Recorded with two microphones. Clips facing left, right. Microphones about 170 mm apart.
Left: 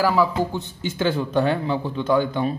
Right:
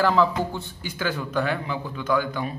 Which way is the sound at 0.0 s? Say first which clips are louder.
Left 1 dB; 10° left (ahead or behind).